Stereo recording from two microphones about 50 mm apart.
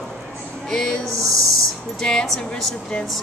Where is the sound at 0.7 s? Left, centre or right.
Centre.